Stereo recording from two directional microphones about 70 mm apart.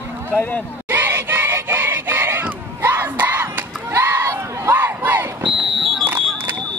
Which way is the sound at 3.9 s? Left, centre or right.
Right.